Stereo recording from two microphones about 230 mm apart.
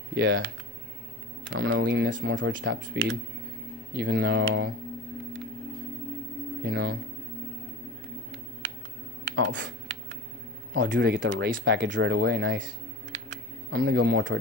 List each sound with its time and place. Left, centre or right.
0.1 s speech: right
1.4 s speech: right
6.6 s speech: right
9.3 s computer keyboard: right
10.7 s speech: right